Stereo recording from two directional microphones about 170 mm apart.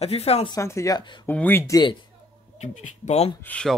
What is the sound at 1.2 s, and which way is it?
Speech, 10° left (ahead or behind).